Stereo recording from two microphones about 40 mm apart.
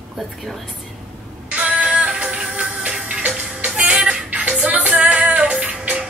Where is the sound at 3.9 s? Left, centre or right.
Right.